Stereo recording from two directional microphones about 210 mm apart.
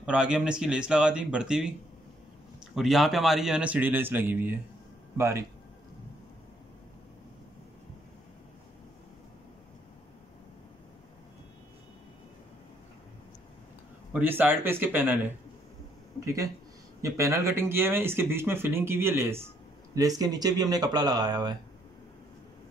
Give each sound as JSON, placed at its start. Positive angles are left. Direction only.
{"t": 0.0, "sound": "speech", "side_deg": -5}
{"t": 2.7, "sound": "speech", "side_deg": 0}
{"t": 14.1, "sound": "speech", "side_deg": -10}
{"t": 17.0, "sound": "speech", "side_deg": -15}